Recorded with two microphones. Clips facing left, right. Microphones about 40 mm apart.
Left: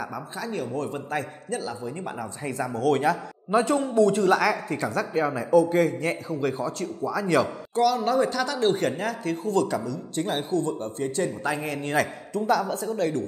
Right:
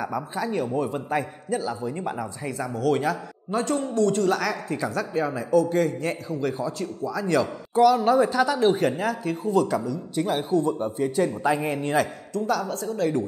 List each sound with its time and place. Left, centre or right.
0.0 s a man's voice: centre
2.8 s speech: centre
7.7 s speech: centre
11.9 s a man's voice: centre